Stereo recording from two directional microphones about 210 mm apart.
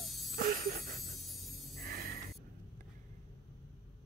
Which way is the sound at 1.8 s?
45° right (ahead or behind).